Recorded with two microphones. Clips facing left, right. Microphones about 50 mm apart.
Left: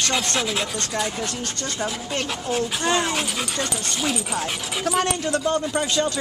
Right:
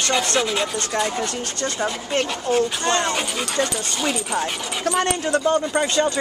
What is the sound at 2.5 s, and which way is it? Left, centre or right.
Rub, centre.